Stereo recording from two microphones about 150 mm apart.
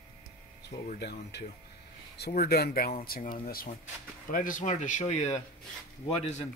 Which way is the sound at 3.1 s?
75° left (ahead or behind).